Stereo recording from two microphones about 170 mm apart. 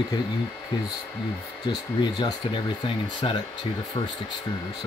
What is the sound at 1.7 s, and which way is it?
Speech, 25° left (ahead or behind).